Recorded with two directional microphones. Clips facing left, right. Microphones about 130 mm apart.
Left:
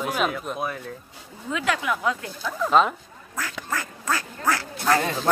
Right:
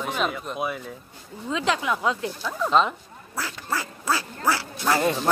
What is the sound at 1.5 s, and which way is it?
Speech, 25° right (ahead or behind).